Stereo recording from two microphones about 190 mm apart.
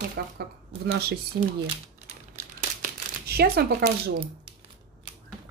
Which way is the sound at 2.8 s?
55° right (ahead or behind).